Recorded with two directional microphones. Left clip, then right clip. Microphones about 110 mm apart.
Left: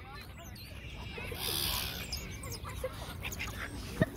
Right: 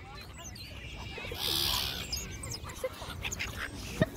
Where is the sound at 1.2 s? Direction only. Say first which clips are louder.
Right 4 dB; 25° right (ahead or behind).